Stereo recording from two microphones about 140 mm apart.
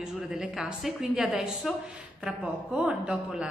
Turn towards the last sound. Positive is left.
turn(degrees=-5)  # may be behind; listen again after turning